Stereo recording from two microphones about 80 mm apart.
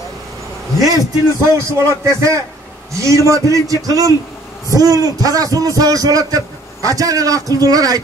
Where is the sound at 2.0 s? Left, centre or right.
Right.